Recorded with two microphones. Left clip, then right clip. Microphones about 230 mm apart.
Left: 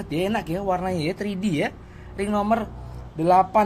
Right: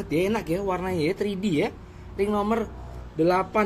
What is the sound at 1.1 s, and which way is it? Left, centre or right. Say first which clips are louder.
Speech: right 1 dB; left.